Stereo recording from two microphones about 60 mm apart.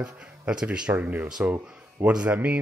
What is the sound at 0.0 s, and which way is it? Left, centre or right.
Speech, centre.